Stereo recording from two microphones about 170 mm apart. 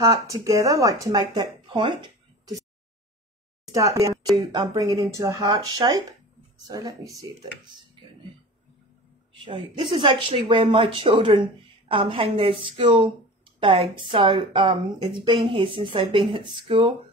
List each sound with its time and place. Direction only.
0.3 s speech: 20° right (ahead or behind)
4.0 s a sound: 25° right (ahead or behind)
4.4 s speech: 20° right (ahead or behind)
9.4 s a woman's voice: 30° right (ahead or behind)